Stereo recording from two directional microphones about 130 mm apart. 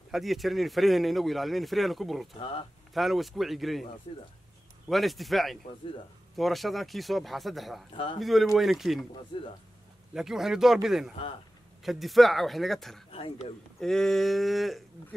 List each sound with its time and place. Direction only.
0.1 s speech: centre (ahead or behind)
4.8 s speech: centre (ahead or behind)
7.9 s speech: 45° left (ahead or behind)
8.2 s speech: centre (ahead or behind)
9.3 s speech: 40° left (ahead or behind)
10.1 s speech: 5° right (ahead or behind)
13.1 s speech: 50° left (ahead or behind)
13.7 s speech: 5° left (ahead or behind)